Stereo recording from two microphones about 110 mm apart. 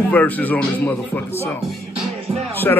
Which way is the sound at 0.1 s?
15° left (ahead or behind).